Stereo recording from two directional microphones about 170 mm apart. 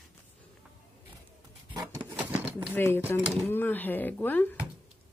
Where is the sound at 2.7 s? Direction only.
15° left (ahead or behind).